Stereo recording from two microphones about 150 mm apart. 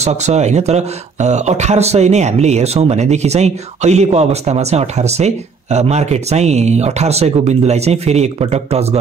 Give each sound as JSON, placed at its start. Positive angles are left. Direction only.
{"t": 0.0, "sound": "speech", "side_deg": -50}